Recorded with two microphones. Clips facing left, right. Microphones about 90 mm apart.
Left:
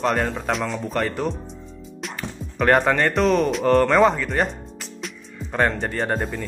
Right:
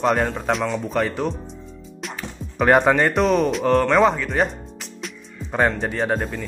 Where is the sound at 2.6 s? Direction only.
10° right (ahead or behind).